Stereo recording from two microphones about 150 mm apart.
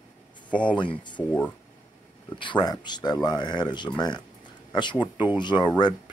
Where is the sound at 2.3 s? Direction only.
30° left (ahead or behind).